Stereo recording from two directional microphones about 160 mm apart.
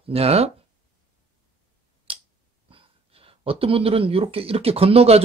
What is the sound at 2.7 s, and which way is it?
Speech, 35° right (ahead or behind).